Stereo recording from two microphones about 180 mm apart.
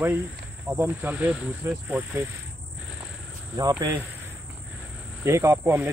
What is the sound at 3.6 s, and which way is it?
Speech, 20° right (ahead or behind).